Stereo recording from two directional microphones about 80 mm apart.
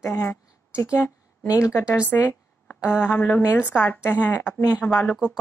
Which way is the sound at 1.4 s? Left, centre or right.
Left.